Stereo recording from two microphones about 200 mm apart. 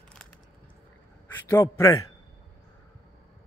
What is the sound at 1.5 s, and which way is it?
Speech, 15° left (ahead or behind).